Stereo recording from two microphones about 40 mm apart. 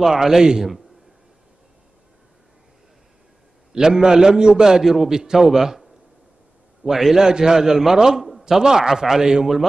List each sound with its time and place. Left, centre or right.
0.0 s a man's voice: centre
3.7 s a man's voice: centre
4.8 s a man's voice: centre